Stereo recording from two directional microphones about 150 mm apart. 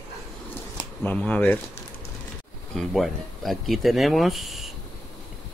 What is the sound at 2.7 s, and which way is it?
Speech, centre (ahead or behind).